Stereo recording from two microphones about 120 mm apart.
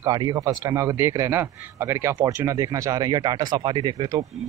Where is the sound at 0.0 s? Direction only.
30° right (ahead or behind).